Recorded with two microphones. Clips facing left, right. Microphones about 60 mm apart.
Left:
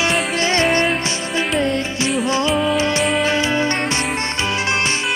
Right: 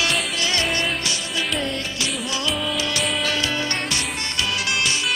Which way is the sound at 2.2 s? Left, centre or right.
Left.